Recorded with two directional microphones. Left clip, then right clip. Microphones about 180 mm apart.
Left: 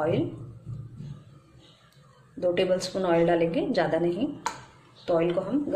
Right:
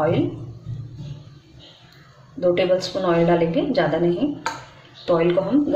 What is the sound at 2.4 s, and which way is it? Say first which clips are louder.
A woman's voice: right 6 dB; 30° left (ahead or behind).